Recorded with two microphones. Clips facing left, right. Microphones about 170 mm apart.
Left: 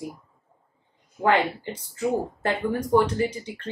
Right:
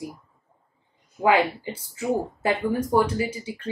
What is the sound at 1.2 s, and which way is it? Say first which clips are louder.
A woman's voice: right 1 dB; 5° right (ahead or behind).